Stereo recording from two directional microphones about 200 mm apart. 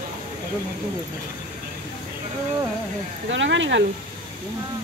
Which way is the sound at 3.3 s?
65° right (ahead or behind).